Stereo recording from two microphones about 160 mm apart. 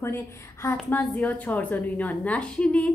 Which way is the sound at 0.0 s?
15° left (ahead or behind).